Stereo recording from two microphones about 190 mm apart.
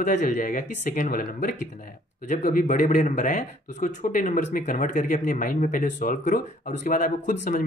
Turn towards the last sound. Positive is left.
turn(degrees=45)  # may be behind; listen again after turning